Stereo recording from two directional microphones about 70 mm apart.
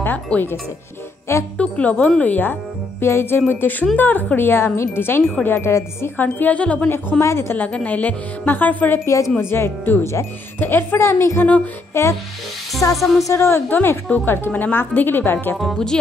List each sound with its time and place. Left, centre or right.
0.0 s speech: left
1.6 s speech: centre
3.0 s speech: left
6.1 s speech: left
6.9 s speech: left
7.5 s speech: left
9.0 s speech: left
9.4 s speech: left
11.9 s music: left
12.9 s a woman's voice: centre
13.3 s speech: left
13.7 s speech: left
15.7 s speech: centre